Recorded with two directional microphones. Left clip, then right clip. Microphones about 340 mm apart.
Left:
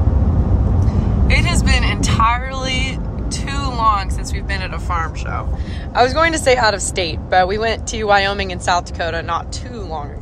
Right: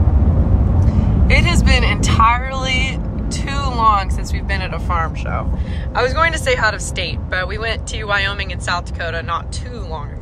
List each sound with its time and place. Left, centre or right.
0.8 s vehicle: centre
4.5 s speech: centre
5.9 s speech: centre